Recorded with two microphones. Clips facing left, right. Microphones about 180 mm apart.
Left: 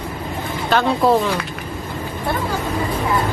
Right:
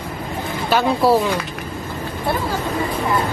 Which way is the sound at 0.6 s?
5° right (ahead or behind).